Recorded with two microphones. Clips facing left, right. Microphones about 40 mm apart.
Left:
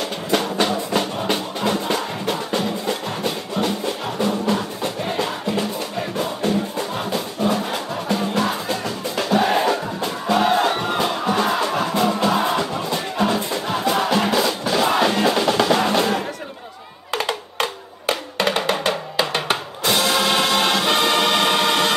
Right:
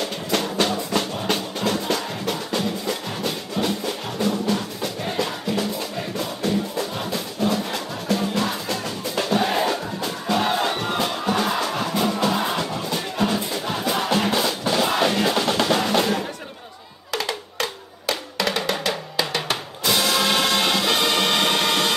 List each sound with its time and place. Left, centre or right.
0.0 s music: centre; by 4.9 s left
7.1 s music: left; by 16.2 s centre
17.1 s music: left
19.5 s drum: centre
20.0 s music: centre